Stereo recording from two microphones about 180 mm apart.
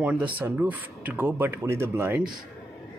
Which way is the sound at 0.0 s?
5° right (ahead or behind).